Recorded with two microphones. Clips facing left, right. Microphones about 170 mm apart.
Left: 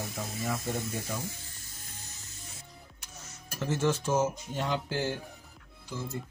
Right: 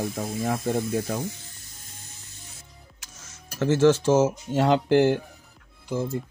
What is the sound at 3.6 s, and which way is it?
Speech, 90° right.